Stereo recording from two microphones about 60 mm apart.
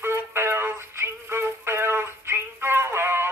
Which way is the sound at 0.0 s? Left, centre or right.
Right.